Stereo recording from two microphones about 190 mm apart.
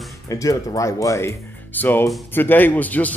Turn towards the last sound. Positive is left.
turn(degrees=10)  # may be behind; listen again after turning